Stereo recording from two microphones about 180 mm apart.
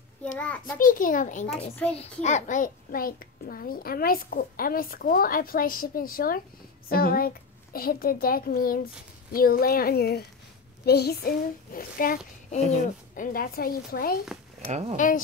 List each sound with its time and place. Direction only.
0.2 s a child's voice: 5° left (ahead or behind)
0.7 s a child's voice: 50° left (ahead or behind)
14.7 s speech: 40° right (ahead or behind)